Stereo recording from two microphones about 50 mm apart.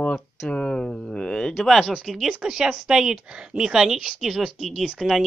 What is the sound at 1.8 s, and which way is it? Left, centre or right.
Speech, centre.